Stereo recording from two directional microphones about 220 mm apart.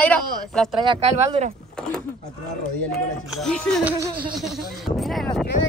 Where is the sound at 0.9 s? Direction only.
25° right (ahead or behind).